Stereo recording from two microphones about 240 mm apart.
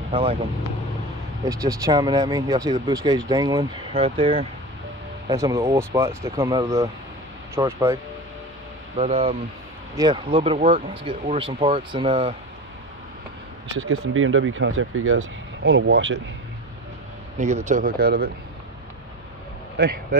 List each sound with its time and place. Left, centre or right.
0.1 s speech: right
5.3 s speech: centre
8.9 s speech: right
13.8 s speech: right
17.4 s speech: right
19.8 s speech: right